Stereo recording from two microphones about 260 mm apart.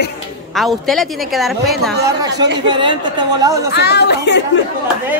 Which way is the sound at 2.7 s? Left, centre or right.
Centre.